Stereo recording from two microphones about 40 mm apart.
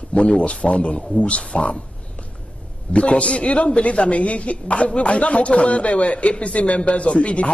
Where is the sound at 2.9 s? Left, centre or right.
Left.